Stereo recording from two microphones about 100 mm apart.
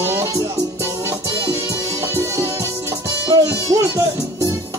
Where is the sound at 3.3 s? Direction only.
35° right (ahead or behind).